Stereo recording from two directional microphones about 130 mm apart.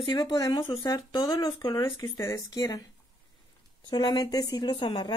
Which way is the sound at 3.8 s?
35° left (ahead or behind).